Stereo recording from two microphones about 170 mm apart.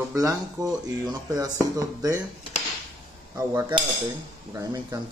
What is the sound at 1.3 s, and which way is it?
Speech, 20° right (ahead or behind).